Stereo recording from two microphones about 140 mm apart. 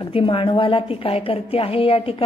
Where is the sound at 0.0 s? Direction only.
40° left (ahead or behind).